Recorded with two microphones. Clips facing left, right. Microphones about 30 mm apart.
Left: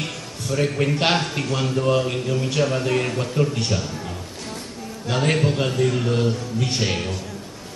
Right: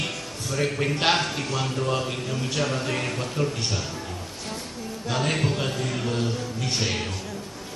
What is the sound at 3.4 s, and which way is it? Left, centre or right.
Speech, left.